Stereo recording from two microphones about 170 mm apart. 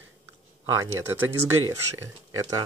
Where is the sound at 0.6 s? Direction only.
15° right (ahead or behind).